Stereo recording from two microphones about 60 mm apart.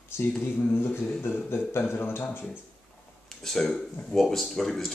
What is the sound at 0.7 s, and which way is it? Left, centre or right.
A man's voice, left.